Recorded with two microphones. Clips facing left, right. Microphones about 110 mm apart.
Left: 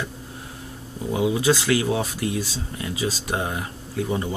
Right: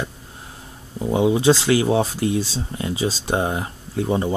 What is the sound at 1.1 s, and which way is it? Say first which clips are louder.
Speech: right 4 dB; 30° right (ahead or behind).